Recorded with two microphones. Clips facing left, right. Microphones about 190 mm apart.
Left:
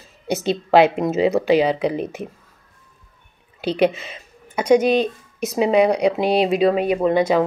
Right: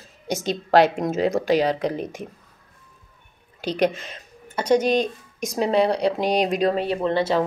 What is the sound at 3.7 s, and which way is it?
Speech, 5° left (ahead or behind).